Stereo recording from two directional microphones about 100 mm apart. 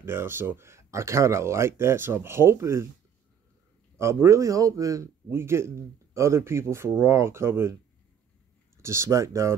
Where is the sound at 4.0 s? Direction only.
30° right (ahead or behind).